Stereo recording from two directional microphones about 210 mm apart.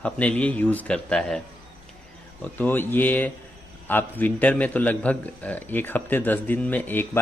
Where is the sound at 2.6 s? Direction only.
10° left (ahead or behind).